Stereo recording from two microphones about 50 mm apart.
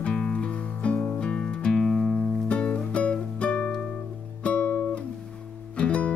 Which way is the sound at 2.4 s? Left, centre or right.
Left.